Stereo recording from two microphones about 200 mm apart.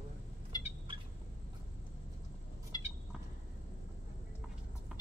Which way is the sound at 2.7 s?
20° left (ahead or behind).